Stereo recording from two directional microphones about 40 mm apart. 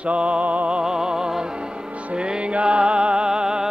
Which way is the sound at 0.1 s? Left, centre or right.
Right.